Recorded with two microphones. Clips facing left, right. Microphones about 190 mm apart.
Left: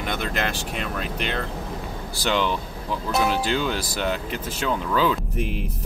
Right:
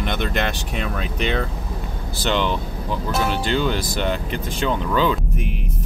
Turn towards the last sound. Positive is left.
turn(degrees=5)  # may be behind; listen again after turning